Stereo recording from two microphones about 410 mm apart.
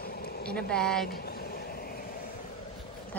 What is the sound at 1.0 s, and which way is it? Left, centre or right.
Vehicle, left.